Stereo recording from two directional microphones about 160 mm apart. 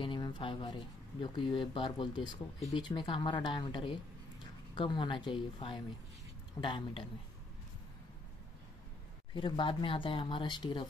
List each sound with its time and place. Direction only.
0.0 s speech: 30° left (ahead or behind)
9.3 s speech: 30° left (ahead or behind)